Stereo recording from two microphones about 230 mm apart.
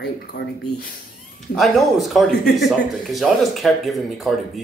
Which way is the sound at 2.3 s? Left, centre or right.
Left.